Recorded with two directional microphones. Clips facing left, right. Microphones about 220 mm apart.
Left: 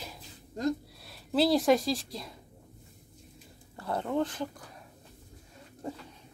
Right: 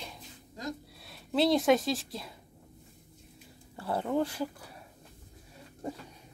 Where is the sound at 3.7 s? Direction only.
5° right (ahead or behind).